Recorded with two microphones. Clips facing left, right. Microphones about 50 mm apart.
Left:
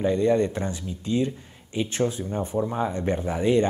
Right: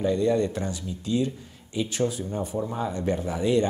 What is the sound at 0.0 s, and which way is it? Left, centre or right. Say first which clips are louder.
A man's voice: left 2 dB; left.